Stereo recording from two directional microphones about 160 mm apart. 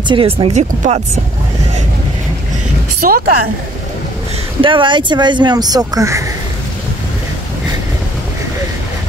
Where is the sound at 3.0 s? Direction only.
60° right (ahead or behind).